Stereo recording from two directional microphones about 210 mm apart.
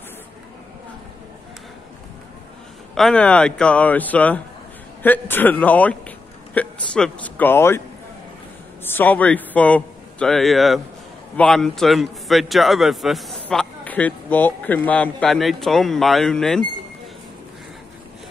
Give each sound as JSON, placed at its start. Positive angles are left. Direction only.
{"t": 2.9, "sound": "a man's voice", "side_deg": 5}
{"t": 8.8, "sound": "a man's voice", "side_deg": 10}